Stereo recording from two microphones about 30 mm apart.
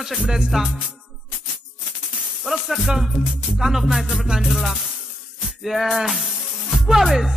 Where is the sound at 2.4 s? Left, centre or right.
Centre.